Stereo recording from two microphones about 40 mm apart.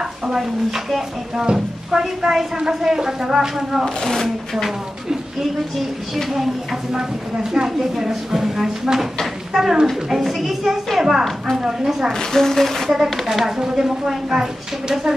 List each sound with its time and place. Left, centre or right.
0.3 s a woman's voice: centre
3.8 s speech: centre
6.3 s a woman's voice: centre
12.1 s speech: centre
13.6 s a woman's voice: centre